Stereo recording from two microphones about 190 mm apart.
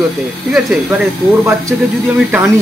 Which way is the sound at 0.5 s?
Centre (ahead or behind).